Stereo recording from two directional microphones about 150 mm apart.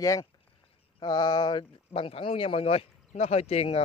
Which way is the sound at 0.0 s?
20° left (ahead or behind).